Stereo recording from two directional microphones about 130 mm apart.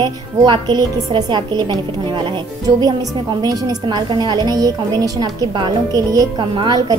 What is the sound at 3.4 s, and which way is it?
Music, 30° right (ahead or behind).